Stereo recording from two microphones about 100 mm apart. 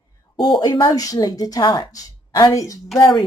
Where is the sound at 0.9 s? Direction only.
35° left (ahead or behind).